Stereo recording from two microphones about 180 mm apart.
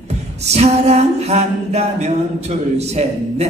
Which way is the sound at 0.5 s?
40° right (ahead or behind).